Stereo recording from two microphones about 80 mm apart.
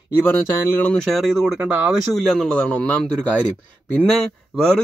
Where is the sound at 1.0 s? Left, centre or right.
Centre.